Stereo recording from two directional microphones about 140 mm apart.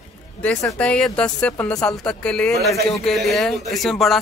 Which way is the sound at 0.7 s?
10° left (ahead or behind).